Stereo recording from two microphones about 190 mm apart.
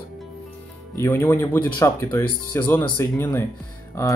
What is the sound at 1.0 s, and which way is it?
Speech, 15° left (ahead or behind).